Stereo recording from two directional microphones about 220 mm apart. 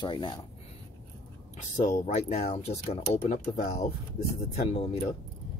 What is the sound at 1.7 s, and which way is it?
Speech, 30° left (ahead or behind).